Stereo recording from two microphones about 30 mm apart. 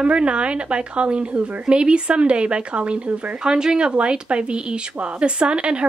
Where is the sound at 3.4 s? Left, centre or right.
Right.